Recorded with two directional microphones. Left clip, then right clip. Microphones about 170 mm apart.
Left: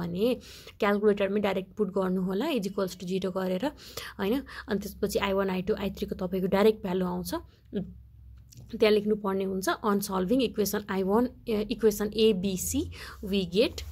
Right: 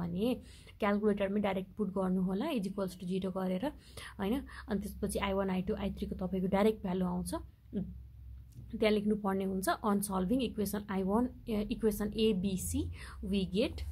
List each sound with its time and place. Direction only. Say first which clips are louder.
0.0 s a woman's voice: left 7 dB; 20° left (ahead or behind)